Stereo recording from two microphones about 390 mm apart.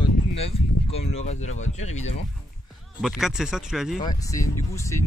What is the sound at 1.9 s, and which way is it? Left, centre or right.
Speech, centre.